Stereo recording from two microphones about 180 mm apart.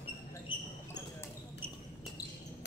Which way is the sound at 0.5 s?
30° left (ahead or behind).